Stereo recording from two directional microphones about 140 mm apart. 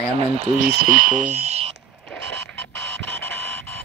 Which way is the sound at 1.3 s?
50° right (ahead or behind).